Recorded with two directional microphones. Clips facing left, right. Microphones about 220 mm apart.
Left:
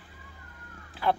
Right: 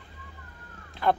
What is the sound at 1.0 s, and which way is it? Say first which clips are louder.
Speech: right 2 dB; 5° left (ahead or behind).